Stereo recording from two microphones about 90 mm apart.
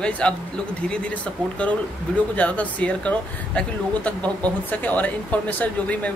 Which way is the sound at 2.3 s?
15° left (ahead or behind).